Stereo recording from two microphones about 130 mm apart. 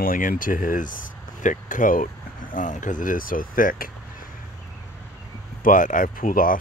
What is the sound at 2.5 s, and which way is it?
Speech, 75° left (ahead or behind).